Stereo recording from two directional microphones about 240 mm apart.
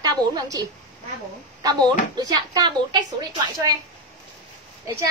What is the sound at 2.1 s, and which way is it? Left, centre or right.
Speech, centre.